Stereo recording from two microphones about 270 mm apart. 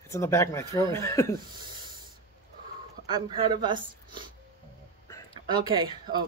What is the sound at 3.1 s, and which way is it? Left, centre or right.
Speech, centre.